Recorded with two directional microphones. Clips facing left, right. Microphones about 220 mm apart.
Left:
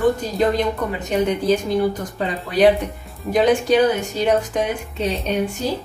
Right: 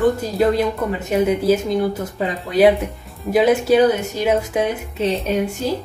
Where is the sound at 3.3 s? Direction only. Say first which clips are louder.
Right 2 dB; 5° right (ahead or behind).